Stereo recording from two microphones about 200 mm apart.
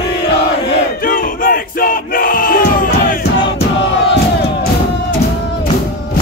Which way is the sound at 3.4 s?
60° left (ahead or behind).